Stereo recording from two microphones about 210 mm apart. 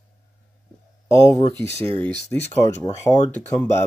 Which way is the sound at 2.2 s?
30° left (ahead or behind).